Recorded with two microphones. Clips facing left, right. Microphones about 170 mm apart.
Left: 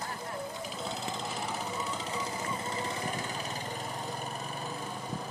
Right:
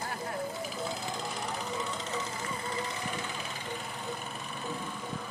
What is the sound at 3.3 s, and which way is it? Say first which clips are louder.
Vehicle: left 3 dB; 40° left (ahead or behind).